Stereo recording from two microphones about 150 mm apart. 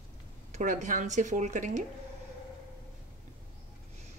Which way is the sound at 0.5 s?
55° right (ahead or behind).